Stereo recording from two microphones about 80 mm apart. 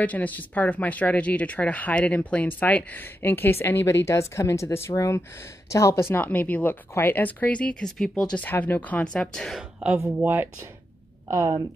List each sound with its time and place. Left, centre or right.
0.0 s speech: centre
8.5 s speech: left
10.2 s speech: right
11.2 s a woman's voice: right